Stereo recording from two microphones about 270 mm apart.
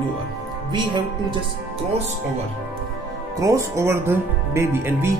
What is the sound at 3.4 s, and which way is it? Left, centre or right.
Speech, centre.